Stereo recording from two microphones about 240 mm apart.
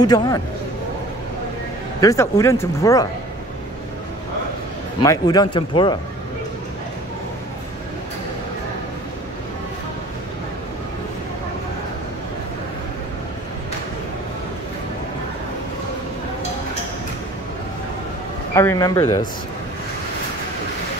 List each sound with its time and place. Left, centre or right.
0.0 s speech: centre
2.0 s speech: centre
5.0 s speech: centre
18.5 s speech: centre